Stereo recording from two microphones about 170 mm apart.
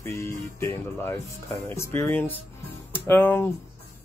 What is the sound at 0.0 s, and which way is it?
Speech, 15° left (ahead or behind).